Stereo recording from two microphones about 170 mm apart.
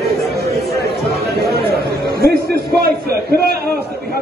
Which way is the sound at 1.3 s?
70° right (ahead or behind).